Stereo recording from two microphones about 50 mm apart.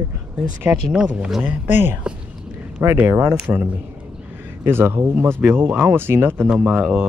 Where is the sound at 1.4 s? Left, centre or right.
Right.